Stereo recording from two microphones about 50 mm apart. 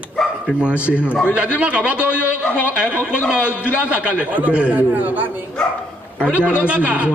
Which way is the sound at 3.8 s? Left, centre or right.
Right.